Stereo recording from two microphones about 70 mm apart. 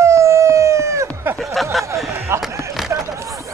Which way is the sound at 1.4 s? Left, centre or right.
Centre.